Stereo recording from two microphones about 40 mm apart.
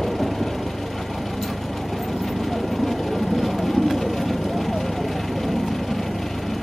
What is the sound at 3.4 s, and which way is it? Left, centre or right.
Vehicle, centre.